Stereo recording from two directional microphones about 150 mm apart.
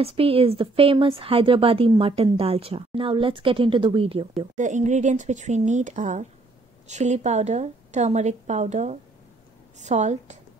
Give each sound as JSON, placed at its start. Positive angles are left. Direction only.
{"t": 0.0, "sound": "a woman's voice", "side_deg": -40}
{"t": 4.6, "sound": "a woman's voice", "side_deg": -55}